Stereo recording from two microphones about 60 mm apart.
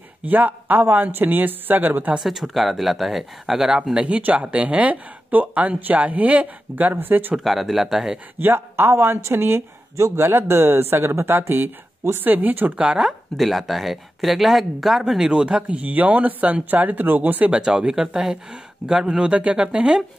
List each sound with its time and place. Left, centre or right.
0.2 s speech: right
2.1 s speech: centre
4.2 s speech: right
7.3 s speech: centre
8.4 s speech: right
12.7 s speech: centre
13.4 s speech: centre; by 17.5 s right
17.5 s speech: centre